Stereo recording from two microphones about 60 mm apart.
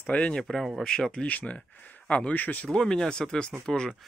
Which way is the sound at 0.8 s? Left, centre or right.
Centre.